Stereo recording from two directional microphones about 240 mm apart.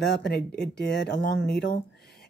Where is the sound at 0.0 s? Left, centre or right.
Left.